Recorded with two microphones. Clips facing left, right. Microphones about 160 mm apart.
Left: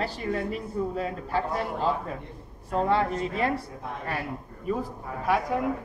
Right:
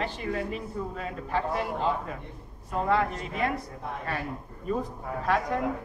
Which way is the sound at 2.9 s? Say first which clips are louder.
Right 1 dB; 30° left (ahead or behind).